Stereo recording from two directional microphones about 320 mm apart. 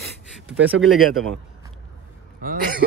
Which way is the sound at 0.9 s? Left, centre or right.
Centre.